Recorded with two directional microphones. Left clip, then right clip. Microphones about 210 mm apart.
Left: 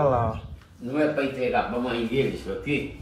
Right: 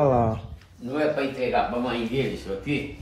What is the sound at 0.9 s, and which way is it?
A man's voice, 5° right (ahead or behind).